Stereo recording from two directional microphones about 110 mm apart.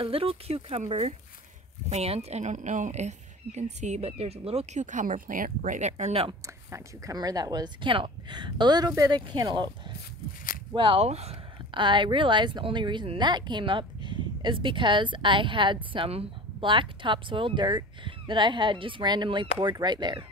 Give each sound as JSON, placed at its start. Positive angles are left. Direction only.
{"t": 0.0, "sound": "speech", "side_deg": -55}
{"t": 1.9, "sound": "speech", "side_deg": -75}
{"t": 5.6, "sound": "speech", "side_deg": -90}
{"t": 6.4, "sound": "speech", "side_deg": -30}
{"t": 11.7, "sound": "speech", "side_deg": -45}